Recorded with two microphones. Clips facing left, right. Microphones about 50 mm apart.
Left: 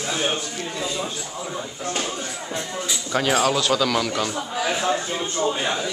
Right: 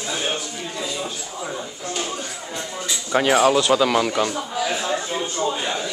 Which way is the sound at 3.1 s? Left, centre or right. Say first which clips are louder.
Right 4 dB; centre.